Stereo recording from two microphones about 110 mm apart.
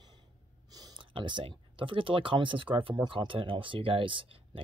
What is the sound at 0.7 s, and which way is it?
Speech, 40° right (ahead or behind).